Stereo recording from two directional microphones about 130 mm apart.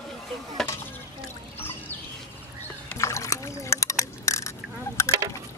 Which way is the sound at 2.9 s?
25° left (ahead or behind).